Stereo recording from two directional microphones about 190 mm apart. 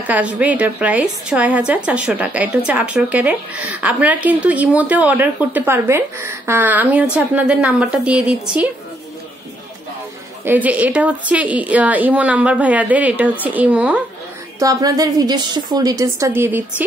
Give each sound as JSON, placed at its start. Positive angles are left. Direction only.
{"t": 0.0, "sound": "a woman's voice", "side_deg": -5}
{"t": 10.4, "sound": "a woman's voice", "side_deg": -10}
{"t": 14.6, "sound": "a woman's voice", "side_deg": -20}